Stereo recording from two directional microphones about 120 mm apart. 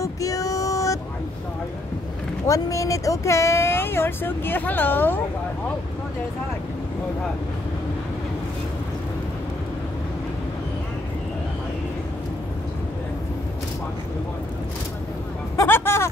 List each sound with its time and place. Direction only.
0.0 s child singing: 30° left (ahead or behind)
2.4 s speech: 25° left (ahead or behind)
15.5 s speech: 20° left (ahead or behind)